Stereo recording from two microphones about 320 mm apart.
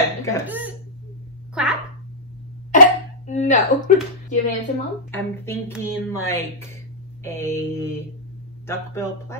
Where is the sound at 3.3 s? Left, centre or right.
Left.